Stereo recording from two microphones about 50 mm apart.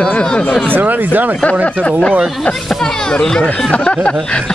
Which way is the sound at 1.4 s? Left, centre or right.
Left.